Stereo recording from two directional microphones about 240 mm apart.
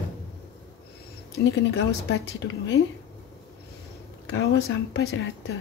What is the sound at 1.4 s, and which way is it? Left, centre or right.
A woman's voice, left.